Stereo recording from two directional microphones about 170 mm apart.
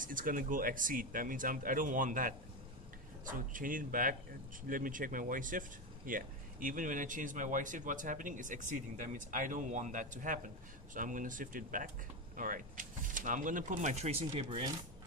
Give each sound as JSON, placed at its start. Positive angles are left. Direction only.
{"t": 0.0, "sound": "speech", "side_deg": -55}